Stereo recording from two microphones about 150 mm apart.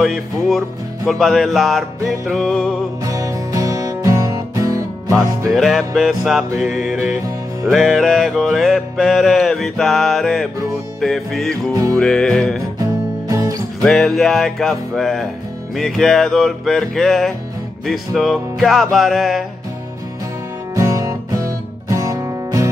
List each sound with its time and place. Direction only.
0.0 s music: centre (ahead or behind)
3.1 s music: 20° right (ahead or behind)
5.5 s music: centre (ahead or behind)
11.7 s music: 20° right (ahead or behind)
12.0 s music: 5° left (ahead or behind)
12.7 s music: 25° right (ahead or behind)
13.8 s music: centre (ahead or behind)
20.7 s music: 20° right (ahead or behind)